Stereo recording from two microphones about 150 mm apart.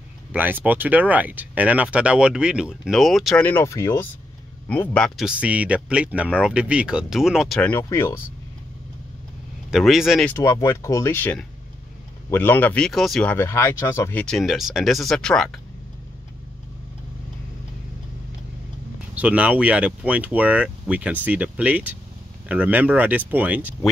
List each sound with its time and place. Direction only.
0.3 s speech: 10° right (ahead or behind)
3.4 s speech: 20° left (ahead or behind)
4.6 s speech: 10° left (ahead or behind)
7.7 s speech: 20° left (ahead or behind)
9.7 s speech: 5° right (ahead or behind)
10.2 s speech: 20° left (ahead or behind)
14.2 s speech: centre (ahead or behind)
19.1 s speech: 10° right (ahead or behind)